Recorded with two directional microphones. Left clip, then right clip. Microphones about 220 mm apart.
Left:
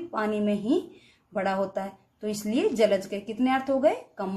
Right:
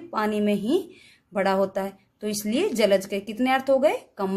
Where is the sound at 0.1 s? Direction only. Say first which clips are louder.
Right 4 dB; 50° right (ahead or behind).